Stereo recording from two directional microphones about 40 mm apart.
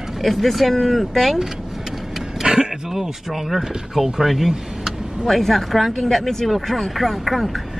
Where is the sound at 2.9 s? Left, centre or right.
Centre.